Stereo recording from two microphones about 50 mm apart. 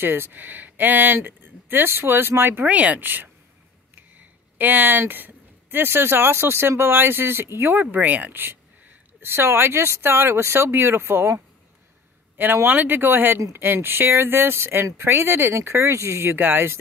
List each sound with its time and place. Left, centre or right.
0.0 s speech: right
2.6 s speech: right
7.7 s a woman's voice: right
12.6 s speech: right
15.5 s a woman's voice: right
16.3 s speech: right